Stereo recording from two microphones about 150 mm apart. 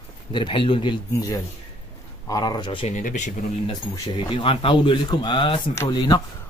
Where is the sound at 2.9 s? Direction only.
55° left (ahead or behind).